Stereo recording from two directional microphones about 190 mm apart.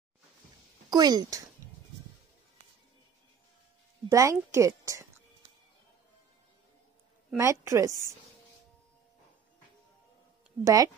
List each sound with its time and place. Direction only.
0.8 s speech: 20° right (ahead or behind)
4.1 s speech: 15° right (ahead or behind)
7.3 s speech: 15° right (ahead or behind)
10.6 s speech: 15° right (ahead or behind)